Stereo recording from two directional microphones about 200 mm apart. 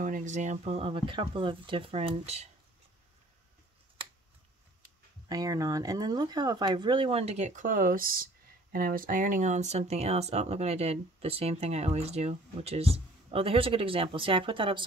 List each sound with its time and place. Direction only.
0.0 s speech: 40° right (ahead or behind)
5.3 s speech: 15° right (ahead or behind)